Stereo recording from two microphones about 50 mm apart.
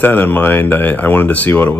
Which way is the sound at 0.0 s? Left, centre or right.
Left.